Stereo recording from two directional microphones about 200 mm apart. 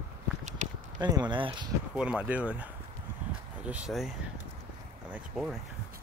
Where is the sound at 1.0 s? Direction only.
20° right (ahead or behind).